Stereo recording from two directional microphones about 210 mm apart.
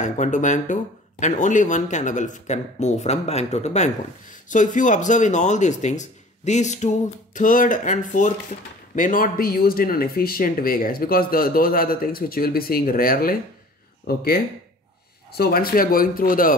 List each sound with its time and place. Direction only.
0.0 s speech: 35° left (ahead or behind)